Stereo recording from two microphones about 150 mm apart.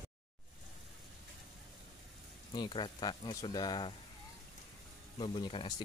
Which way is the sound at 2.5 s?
30° left (ahead or behind).